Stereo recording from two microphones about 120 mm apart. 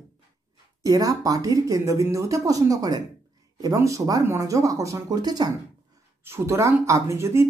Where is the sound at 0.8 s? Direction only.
30° right (ahead or behind).